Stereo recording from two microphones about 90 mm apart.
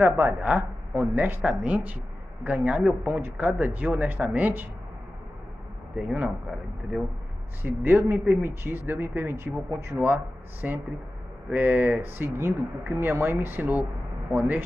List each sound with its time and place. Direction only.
0.0 s speech: 25° right (ahead or behind)
5.9 s speech: 10° right (ahead or behind)
7.6 s speech: 20° right (ahead or behind)